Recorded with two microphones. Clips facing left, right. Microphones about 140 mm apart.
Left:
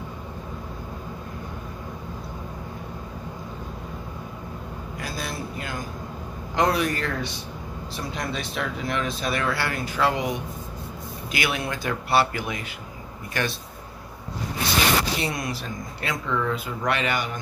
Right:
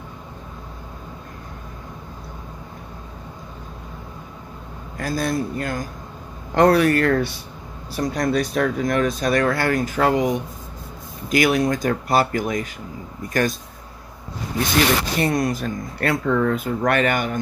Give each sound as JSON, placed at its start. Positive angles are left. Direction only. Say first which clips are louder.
{"t": 4.9, "sound": "a man's voice", "louder": "right 10 dB", "side_deg": -50}
{"t": 8.0, "sound": "speech", "louder": "right 10 dB", "side_deg": -45}
{"t": 15.1, "sound": "speech", "louder": "right 8 dB", "side_deg": -50}